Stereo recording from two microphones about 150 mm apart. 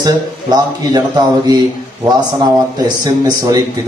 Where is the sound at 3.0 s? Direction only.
25° right (ahead or behind).